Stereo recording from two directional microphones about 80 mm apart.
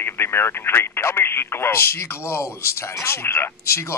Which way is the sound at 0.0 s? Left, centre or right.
Left.